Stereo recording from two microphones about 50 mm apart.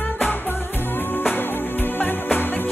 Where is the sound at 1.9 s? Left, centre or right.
Left.